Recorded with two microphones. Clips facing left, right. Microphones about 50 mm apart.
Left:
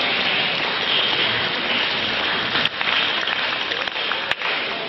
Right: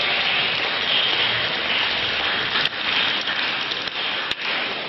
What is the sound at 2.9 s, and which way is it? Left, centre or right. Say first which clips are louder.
Applause: left 1 dB; centre.